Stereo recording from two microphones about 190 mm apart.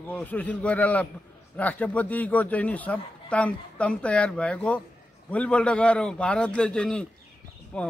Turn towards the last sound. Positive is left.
turn(degrees=5)  # may be behind; listen again after turning